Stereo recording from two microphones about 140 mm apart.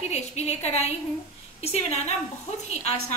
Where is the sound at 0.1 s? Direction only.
50° left (ahead or behind).